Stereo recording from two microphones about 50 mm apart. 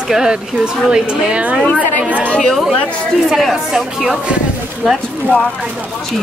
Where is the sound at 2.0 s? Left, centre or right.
Right.